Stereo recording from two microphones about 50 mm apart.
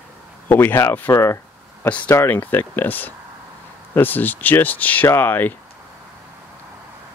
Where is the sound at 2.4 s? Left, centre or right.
Left.